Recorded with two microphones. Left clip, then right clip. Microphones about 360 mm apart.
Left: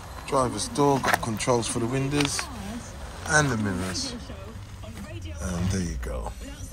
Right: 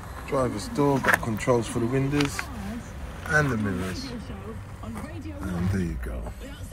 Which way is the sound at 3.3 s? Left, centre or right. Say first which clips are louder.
Left 1 dB; centre.